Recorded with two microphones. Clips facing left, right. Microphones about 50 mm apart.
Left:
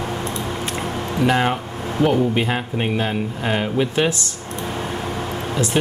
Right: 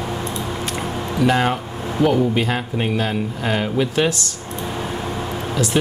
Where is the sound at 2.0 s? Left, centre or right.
Left.